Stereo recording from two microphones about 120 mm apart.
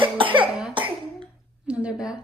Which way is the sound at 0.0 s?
45° right (ahead or behind).